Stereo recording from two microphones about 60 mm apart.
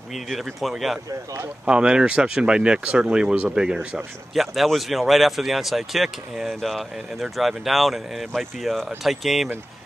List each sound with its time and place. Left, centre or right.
0.1 s speech: centre
1.7 s speech: centre
4.3 s speech: centre